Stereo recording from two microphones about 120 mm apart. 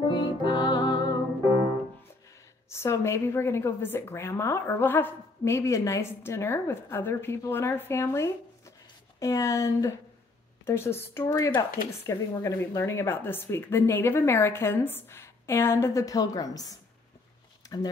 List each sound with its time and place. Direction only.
0.1 s music: 40° left (ahead or behind)
2.7 s a woman's voice: 20° left (ahead or behind)
17.6 s a sound: 30° left (ahead or behind)